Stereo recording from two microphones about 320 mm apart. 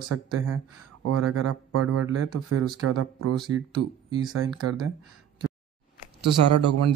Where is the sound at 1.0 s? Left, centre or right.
Right.